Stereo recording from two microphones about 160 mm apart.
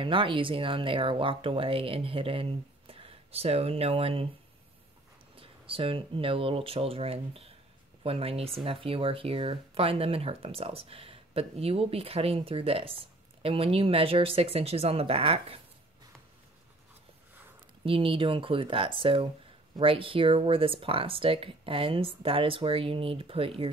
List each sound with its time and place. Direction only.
0.0 s speech: 30° right (ahead or behind)
5.3 s speech: 35° right (ahead or behind)
17.8 s speech: 35° right (ahead or behind)